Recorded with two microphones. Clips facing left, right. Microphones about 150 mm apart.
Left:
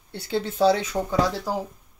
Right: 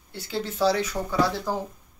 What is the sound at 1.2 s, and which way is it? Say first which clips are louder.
Speech: right 1 dB; 10° left (ahead or behind).